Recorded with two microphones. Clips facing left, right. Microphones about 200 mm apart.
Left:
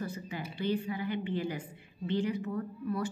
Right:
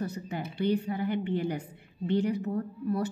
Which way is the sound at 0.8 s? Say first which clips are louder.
Right 4 dB; 45° right (ahead or behind).